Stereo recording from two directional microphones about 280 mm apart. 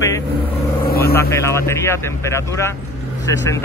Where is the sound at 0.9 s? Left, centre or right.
Left.